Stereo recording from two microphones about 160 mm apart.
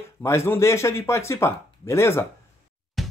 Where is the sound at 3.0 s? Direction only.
Centre (ahead or behind).